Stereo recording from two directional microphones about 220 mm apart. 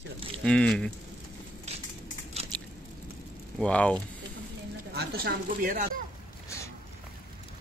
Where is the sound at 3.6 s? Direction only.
5° left (ahead or behind).